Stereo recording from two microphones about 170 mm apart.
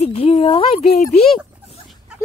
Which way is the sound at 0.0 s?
40° left (ahead or behind).